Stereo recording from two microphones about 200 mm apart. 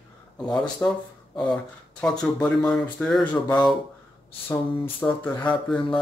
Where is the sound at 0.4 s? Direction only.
5° left (ahead or behind).